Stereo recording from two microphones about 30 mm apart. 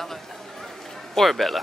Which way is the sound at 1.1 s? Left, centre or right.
Centre.